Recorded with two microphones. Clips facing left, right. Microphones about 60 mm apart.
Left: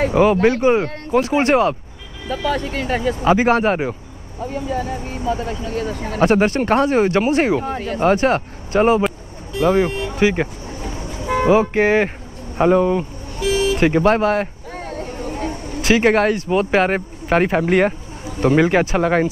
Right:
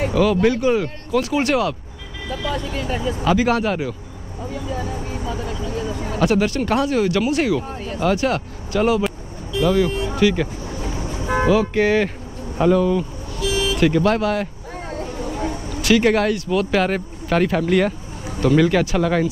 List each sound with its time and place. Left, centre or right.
0.1 s speech: left
2.2 s speech: left
3.2 s speech: left
4.5 s speech: left
7.6 s speech: left
8.0 s speech: left
14.7 s a sound: left
15.8 s speech: left